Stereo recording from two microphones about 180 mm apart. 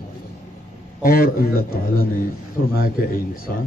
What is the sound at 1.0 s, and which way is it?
A man's voice, 55° left (ahead or behind).